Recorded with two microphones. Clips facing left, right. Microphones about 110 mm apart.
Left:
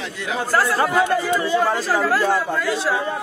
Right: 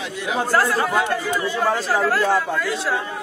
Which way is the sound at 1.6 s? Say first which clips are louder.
Even; centre (ahead or behind).